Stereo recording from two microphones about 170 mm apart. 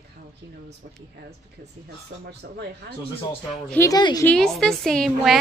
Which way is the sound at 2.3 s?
80° right.